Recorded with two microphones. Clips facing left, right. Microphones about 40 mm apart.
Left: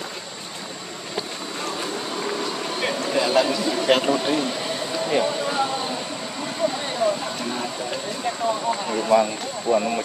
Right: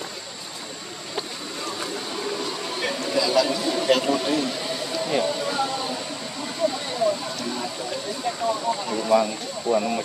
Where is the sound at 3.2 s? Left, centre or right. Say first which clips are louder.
Left 1 dB; left.